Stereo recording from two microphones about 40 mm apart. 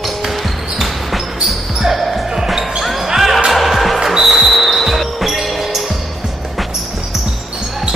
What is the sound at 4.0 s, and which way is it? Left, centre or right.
Music, centre.